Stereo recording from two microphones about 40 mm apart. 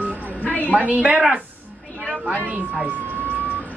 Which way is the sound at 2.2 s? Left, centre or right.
Right.